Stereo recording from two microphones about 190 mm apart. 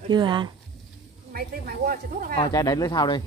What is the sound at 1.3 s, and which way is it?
Speech, 50° right (ahead or behind).